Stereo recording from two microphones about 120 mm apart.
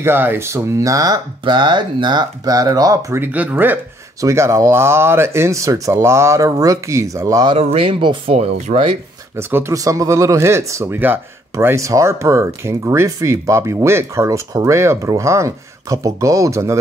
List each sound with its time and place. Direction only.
0.0 s speech: 20° right (ahead or behind)
1.4 s speech: 40° right (ahead or behind); by 3.8 s 15° right (ahead or behind)
4.2 s speech: 25° right (ahead or behind)
7.5 s speech: 50° right (ahead or behind)
8.4 s speech: 70° right (ahead or behind)
9.4 s speech: 20° right (ahead or behind)